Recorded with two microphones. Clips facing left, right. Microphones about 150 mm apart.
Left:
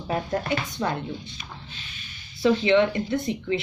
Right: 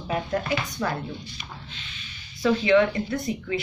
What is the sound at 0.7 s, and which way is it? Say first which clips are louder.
Speech: left 1 dB; 25° left (ahead or behind).